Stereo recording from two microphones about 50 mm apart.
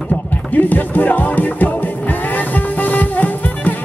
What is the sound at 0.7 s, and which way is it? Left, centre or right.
Music, left.